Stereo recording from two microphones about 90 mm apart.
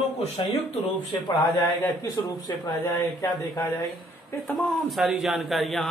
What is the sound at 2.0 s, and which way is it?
Speech, 50° left (ahead or behind).